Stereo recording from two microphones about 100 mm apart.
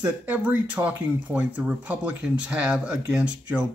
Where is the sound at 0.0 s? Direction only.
15° right (ahead or behind).